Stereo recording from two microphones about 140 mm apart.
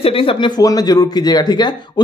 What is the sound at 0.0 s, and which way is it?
A man's voice, 40° left (ahead or behind).